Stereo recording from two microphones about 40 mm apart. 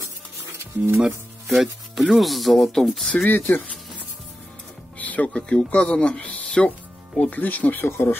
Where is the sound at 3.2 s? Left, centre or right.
Left.